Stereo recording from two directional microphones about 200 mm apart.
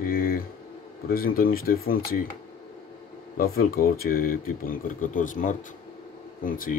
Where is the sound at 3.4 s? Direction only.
45° left (ahead or behind).